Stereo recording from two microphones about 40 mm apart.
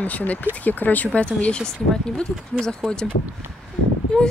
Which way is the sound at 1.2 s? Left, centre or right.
Left.